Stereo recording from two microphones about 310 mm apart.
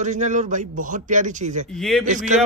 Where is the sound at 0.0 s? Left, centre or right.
Right.